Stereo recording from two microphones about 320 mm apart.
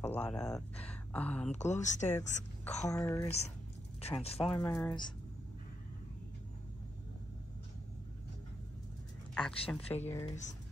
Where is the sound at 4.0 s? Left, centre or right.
Centre.